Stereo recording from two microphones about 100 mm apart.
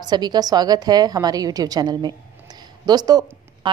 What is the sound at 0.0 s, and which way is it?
A woman's voice, 45° right (ahead or behind).